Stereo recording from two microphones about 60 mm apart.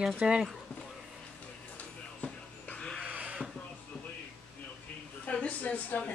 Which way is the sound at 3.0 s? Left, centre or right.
Right.